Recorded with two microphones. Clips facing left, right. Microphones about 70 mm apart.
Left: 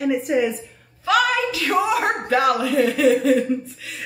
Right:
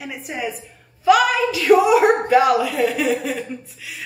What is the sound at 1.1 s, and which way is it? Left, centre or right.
A woman's voice, centre.